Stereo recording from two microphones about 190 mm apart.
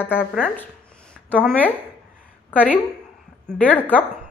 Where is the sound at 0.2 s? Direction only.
Centre (ahead or behind).